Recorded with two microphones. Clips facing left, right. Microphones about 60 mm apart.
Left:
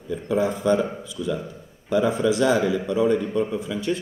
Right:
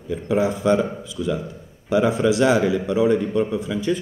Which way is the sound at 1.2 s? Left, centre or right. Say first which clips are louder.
Right 3 dB; right.